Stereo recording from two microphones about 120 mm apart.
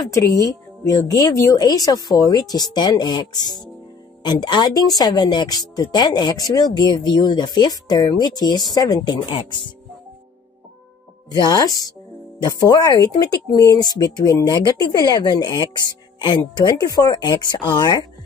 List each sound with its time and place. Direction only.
0.1 s a woman's voice: 25° left (ahead or behind)
11.4 s a woman's voice: 30° left (ahead or behind)